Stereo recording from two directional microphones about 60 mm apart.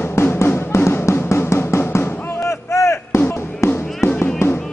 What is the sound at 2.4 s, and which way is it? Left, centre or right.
Artillery fire, left.